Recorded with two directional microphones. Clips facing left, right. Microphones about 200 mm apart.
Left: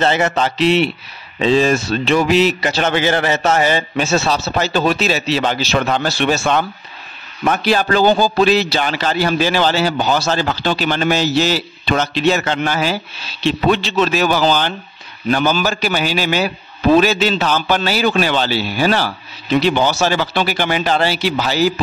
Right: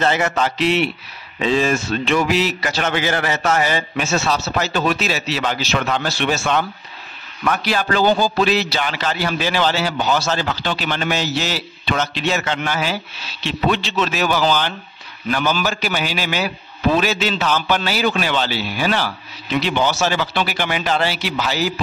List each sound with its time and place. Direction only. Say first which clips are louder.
0.0 s a man's voice: left 3 dB; 30° left (ahead or behind)